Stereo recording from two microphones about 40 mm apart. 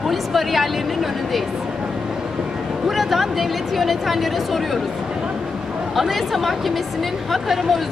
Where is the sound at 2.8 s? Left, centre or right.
Centre.